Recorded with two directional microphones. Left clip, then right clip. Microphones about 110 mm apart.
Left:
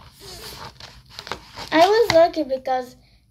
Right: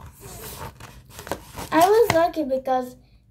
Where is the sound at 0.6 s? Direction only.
25° right (ahead or behind).